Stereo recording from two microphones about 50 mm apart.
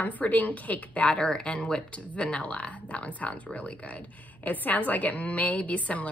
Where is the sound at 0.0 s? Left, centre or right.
Left.